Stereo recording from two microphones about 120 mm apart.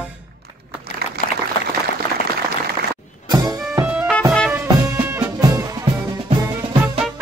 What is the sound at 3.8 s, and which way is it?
Music, 10° right (ahead or behind).